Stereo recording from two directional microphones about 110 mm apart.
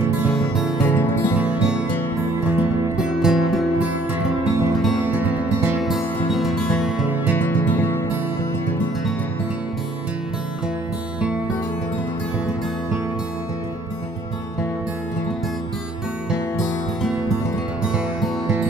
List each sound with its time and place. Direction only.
0.8 s music: 20° left (ahead or behind)
1.4 s music: 10° right (ahead or behind)
5.0 s music: 15° right (ahead or behind)
6.3 s music: centre (ahead or behind)
7.3 s music: 20° left (ahead or behind)